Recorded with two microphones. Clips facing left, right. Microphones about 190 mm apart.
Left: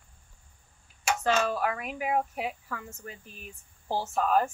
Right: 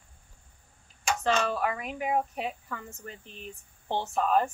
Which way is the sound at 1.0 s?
5° left (ahead or behind).